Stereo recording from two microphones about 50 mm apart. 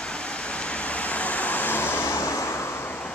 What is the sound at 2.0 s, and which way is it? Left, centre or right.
Vehicle, left.